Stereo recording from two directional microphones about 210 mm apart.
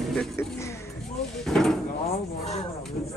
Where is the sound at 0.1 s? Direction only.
5° left (ahead or behind).